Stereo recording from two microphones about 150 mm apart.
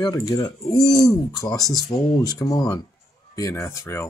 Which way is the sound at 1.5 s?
25° left (ahead or behind).